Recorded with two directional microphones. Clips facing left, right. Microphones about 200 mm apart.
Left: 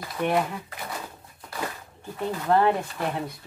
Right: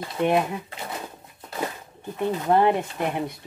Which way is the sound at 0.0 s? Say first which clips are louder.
Right 3 dB; 25° right (ahead or behind).